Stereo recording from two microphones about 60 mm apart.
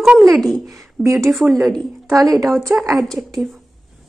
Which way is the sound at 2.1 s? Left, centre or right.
Right.